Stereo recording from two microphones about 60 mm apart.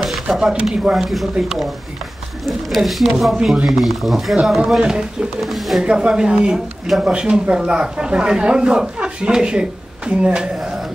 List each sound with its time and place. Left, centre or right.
0.0 s a sound: centre
0.4 s speech: centre
0.9 s speech: centre
5.4 s speech: centre
5.9 s speech: centre